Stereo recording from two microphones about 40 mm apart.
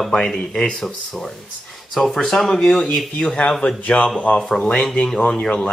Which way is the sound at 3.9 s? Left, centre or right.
Left.